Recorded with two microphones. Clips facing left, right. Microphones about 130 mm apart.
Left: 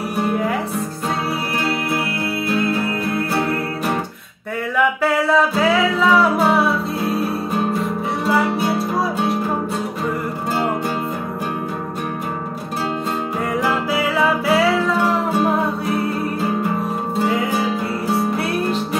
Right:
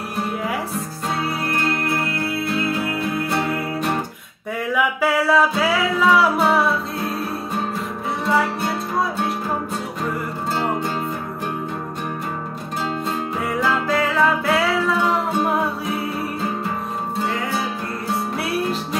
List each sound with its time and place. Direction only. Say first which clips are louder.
1.5 s music: even; 10° left (ahead or behind)
4.7 s music: left 2 dB; 5° right (ahead or behind)
8.3 s music: left 2 dB; 5° left (ahead or behind)
13.6 s music: right 1 dB; 10° left (ahead or behind)
17.2 s music: left 5 dB; 15° left (ahead or behind)